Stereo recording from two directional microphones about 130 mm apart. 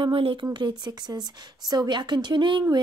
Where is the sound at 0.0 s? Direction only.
45° right (ahead or behind).